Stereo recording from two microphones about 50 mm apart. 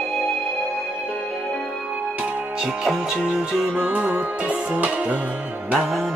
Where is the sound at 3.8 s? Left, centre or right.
Right.